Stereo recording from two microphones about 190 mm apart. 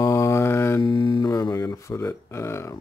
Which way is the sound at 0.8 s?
25° left (ahead or behind).